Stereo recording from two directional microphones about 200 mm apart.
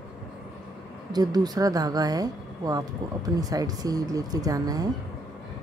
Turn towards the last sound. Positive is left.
turn(degrees=-20)  # may be behind; listen again after turning